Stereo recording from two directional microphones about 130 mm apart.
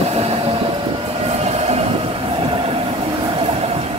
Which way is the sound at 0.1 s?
50° right (ahead or behind).